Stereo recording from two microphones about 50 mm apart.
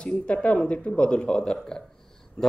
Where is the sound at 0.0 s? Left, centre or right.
Left.